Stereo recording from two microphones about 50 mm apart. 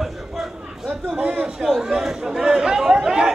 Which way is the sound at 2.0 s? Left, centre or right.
Centre.